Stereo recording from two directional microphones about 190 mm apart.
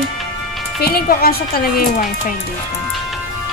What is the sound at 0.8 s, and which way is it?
Speech, 50° left (ahead or behind).